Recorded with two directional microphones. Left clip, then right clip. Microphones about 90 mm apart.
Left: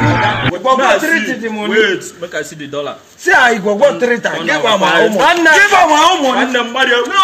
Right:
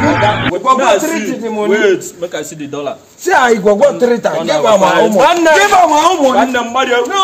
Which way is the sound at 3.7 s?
30° right (ahead or behind).